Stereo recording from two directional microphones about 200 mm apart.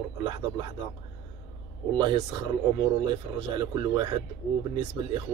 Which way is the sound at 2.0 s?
20° right (ahead or behind).